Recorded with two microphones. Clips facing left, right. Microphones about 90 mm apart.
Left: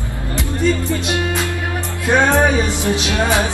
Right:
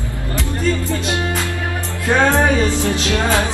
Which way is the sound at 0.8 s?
20° left (ahead or behind).